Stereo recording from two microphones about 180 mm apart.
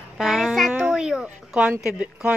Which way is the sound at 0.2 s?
Centre (ahead or behind).